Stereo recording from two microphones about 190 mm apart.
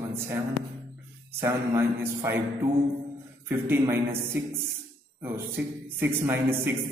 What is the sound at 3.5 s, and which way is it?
Speech, 10° right (ahead or behind).